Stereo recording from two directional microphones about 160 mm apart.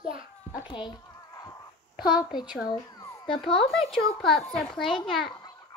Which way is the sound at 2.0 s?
5° right (ahead or behind).